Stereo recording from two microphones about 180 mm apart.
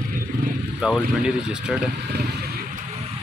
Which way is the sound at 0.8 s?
Centre (ahead or behind).